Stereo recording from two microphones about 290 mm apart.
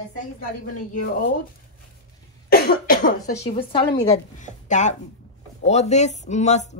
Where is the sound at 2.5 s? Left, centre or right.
Left.